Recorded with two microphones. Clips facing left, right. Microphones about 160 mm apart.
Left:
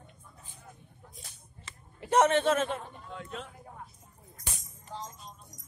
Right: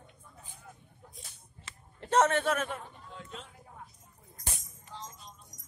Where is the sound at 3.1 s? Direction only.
65° left (ahead or behind).